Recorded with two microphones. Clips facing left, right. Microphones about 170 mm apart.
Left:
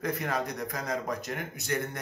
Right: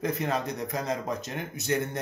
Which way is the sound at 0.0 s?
25° right (ahead or behind).